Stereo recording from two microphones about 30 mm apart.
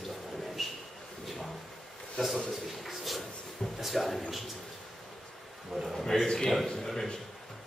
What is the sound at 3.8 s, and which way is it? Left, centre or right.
Speech, centre.